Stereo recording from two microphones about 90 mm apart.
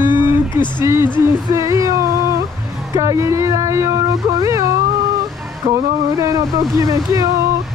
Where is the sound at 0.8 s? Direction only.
35° right (ahead or behind).